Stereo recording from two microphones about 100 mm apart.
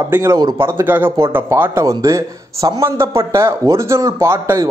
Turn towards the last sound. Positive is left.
turn(degrees=-30)  # may be behind; listen again after turning